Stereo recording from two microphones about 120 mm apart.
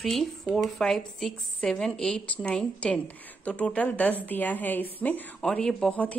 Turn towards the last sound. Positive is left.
turn(degrees=10)  # may be behind; listen again after turning